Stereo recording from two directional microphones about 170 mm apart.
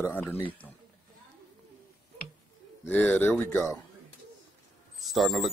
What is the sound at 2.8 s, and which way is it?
Speech, 10° left (ahead or behind).